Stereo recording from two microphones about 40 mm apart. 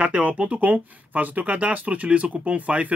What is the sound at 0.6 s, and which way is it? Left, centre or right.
Speech, right.